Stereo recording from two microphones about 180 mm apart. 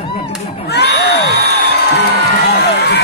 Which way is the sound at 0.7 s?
70° left (ahead or behind).